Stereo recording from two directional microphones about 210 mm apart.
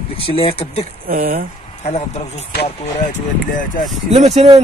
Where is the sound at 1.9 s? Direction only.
30° left (ahead or behind).